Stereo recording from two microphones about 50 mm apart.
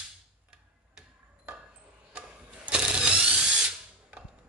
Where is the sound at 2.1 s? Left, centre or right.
Right.